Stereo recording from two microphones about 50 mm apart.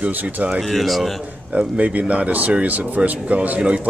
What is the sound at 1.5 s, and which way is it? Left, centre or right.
Speech, right.